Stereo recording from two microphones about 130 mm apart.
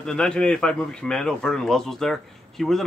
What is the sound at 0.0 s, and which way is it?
Speech, 5° left (ahead or behind).